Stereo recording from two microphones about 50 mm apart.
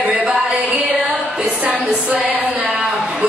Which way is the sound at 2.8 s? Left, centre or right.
Centre.